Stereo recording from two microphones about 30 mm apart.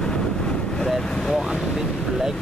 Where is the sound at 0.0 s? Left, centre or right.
Left.